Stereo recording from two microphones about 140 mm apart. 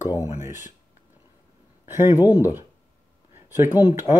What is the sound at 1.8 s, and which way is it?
Speech, 15° right (ahead or behind).